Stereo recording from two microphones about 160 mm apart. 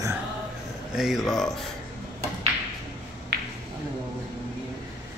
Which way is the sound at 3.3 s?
90° right.